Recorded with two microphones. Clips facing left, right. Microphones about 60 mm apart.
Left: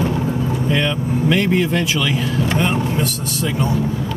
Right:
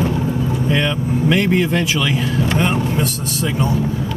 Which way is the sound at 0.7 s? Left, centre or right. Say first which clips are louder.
Right 1 dB; centre.